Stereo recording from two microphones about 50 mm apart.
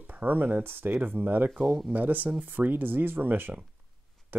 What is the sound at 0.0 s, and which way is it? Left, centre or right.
Speech, right.